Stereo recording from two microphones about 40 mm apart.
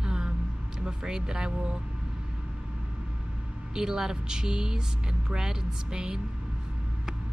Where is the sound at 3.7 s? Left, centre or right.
Centre.